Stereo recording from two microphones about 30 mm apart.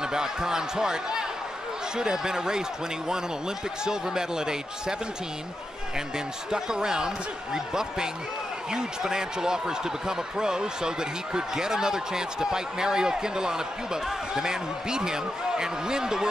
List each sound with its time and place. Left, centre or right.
0.0 s speech: right
5.9 s speech: right